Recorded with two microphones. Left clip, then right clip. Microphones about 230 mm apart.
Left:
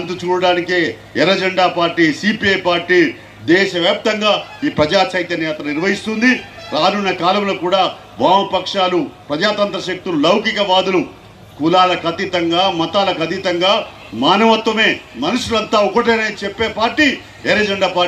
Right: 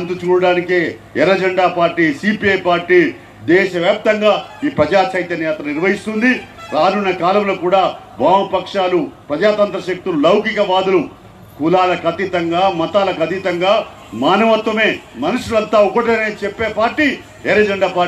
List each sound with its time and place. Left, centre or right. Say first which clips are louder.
0.1 s a man's voice: right 1 dB; left